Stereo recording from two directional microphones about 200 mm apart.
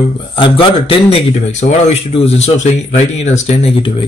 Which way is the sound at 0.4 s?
25° left (ahead or behind).